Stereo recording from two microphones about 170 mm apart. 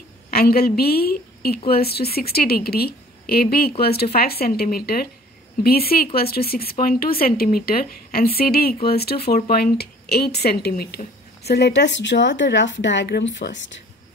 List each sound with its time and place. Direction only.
0.3 s a woman's voice: 65° left (ahead or behind); by 13.7 s 90° left